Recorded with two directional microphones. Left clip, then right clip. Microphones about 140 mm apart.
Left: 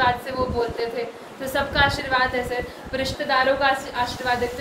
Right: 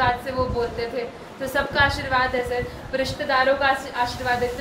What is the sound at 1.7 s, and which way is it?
A woman's voice, 20° left (ahead or behind).